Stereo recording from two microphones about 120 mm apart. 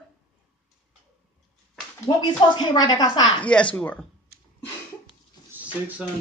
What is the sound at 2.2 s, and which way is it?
A woman's voice, 35° left (ahead or behind).